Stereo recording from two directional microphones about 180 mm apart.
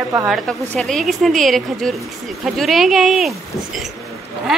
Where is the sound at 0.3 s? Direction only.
Centre (ahead or behind).